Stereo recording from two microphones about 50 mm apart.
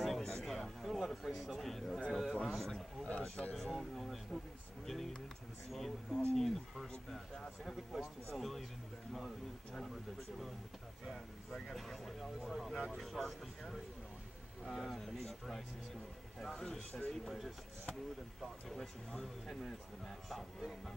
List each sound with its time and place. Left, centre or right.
0.0 s a sound: centre
2.3 s a man's voice: centre
3.1 s speech: left
3.7 s a man's voice: centre
7.6 s a man's voice: centre
11.1 s a man's voice: centre